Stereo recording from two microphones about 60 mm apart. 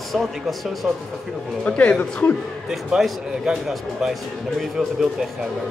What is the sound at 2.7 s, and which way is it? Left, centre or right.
Speech, centre.